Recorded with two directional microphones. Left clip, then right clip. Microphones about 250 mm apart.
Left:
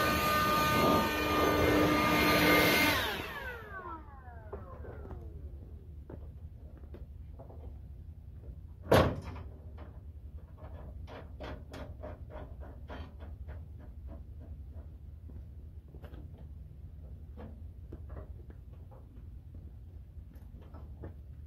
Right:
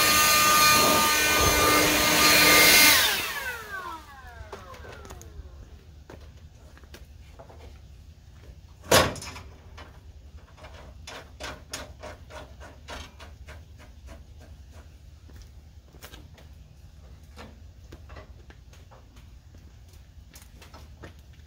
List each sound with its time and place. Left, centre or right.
0.0 s wood: centre
1.6 s vacuum cleaner: centre; by 4.0 s right
4.5 s vehicle: right
8.8 s door: centre
11.1 s hammer: centre